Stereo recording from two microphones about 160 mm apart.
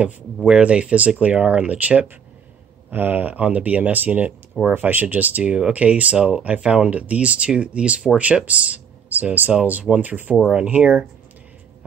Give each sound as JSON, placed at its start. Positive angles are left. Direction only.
{"t": 0.5, "sound": "speech", "side_deg": -5}